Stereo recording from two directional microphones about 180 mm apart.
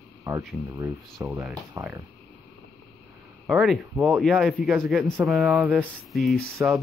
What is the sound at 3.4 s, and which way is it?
Speech, centre (ahead or behind).